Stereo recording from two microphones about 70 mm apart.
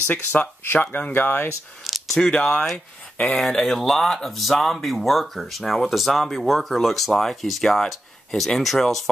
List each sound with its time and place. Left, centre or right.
0.0 s speech: left
1.9 s a sound: centre
2.1 s speech: centre